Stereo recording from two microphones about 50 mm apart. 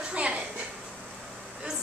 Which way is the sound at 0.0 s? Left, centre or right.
Right.